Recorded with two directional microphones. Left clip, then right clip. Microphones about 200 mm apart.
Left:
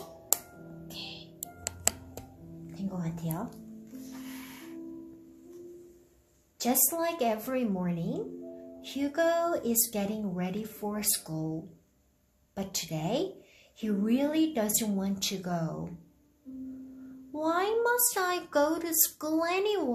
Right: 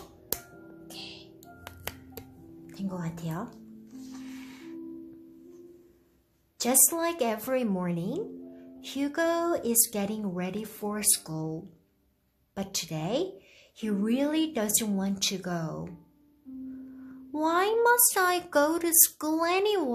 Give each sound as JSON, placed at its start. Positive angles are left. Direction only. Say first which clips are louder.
{"t": 0.8, "sound": "music", "louder": "left 1 dB", "side_deg": -35}
{"t": 2.6, "sound": "music", "louder": "right 2 dB", "side_deg": -35}
{"t": 6.6, "sound": "a child's voice", "louder": "right 2 dB", "side_deg": -35}
{"t": 17.3, "sound": "a child's voice", "louder": "right 3 dB", "side_deg": -35}